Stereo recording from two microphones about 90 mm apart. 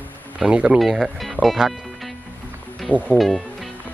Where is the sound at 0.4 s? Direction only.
10° right (ahead or behind).